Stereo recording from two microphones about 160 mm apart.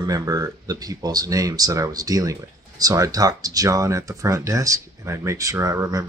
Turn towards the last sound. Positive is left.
turn(degrees=-20)  # may be behind; listen again after turning